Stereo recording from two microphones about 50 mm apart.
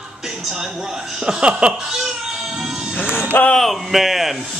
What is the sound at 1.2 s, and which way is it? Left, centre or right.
Speech, centre.